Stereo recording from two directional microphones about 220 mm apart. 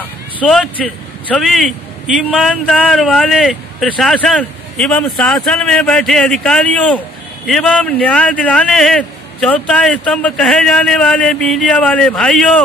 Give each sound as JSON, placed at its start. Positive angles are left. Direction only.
{"t": 0.4, "sound": "a man's voice", "side_deg": 5}